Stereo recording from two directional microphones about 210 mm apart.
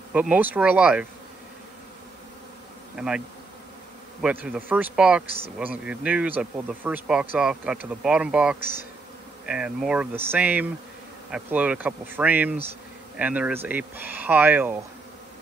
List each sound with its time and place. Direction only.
0.1 s speech: 5° right (ahead or behind)
3.0 s bee: 5° right (ahead or behind)
4.2 s speech: 5° right (ahead or behind)